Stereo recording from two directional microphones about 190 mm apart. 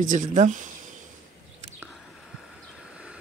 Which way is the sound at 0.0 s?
40° right (ahead or behind).